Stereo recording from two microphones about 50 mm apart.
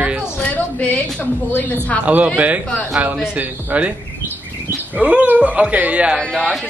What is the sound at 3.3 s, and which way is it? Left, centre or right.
A man's voice, right.